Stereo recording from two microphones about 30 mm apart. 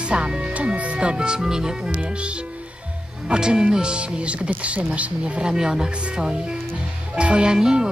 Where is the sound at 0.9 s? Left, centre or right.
Right.